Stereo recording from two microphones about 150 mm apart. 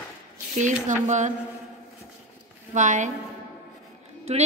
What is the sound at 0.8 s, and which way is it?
Mantra, 55° right (ahead or behind).